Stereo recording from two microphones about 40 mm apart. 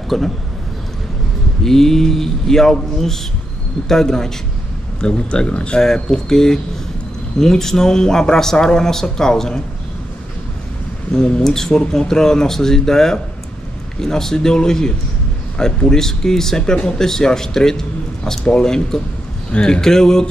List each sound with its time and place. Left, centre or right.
0.1 s speech: centre
1.6 s speech: centre
5.0 s speech: left
5.8 s speech: centre
11.1 s a man's voice: centre